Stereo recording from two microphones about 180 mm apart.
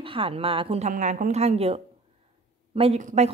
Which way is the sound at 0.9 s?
45° right (ahead or behind).